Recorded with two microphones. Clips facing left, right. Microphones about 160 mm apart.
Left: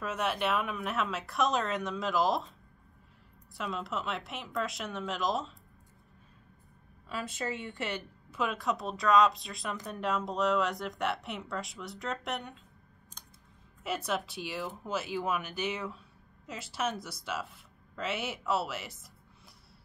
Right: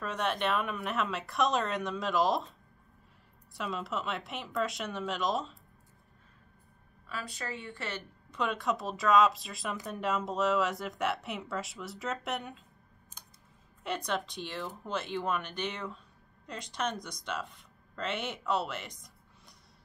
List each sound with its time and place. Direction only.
0.0 s speech: 5° left (ahead or behind)
3.5 s speech: centre (ahead or behind)
7.1 s speech: 20° left (ahead or behind)
8.3 s speech: 5° left (ahead or behind)
13.8 s speech: 5° left (ahead or behind)